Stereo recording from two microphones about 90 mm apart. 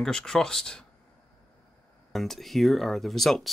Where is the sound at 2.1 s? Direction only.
Centre (ahead or behind).